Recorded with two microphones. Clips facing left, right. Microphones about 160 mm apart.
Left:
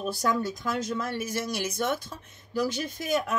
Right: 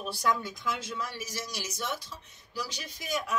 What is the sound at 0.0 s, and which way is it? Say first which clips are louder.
Speech: left 3 dB; 45° left (ahead or behind).